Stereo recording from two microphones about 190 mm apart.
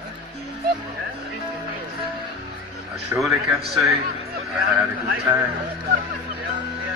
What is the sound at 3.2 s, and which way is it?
Speech, centre (ahead or behind).